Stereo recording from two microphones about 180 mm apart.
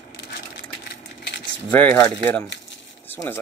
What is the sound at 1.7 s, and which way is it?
Speech, 10° left (ahead or behind).